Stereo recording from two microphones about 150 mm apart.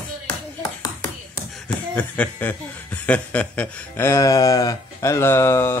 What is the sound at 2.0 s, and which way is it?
Speech, 10° left (ahead or behind).